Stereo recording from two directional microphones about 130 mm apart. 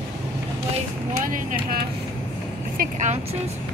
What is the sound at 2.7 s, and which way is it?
Vehicle, 65° right (ahead or behind).